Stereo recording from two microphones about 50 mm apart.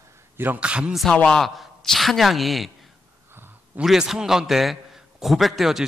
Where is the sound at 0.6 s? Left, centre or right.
Right.